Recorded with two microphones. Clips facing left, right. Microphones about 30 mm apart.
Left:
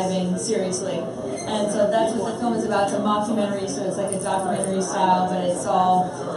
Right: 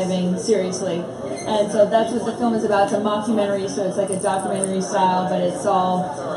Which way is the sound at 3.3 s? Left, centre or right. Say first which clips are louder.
Right 4 dB; centre.